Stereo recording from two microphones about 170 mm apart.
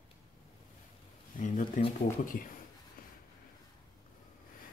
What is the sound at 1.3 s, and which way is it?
Speech, 50° left (ahead or behind).